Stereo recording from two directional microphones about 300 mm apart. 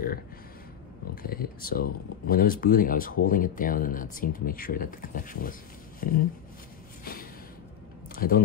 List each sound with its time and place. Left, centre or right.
1.1 s speech: left
8.2 s speech: left